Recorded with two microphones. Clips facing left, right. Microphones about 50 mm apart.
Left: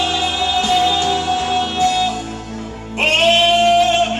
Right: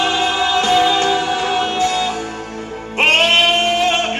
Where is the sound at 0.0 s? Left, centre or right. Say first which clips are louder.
Right 2 dB; right.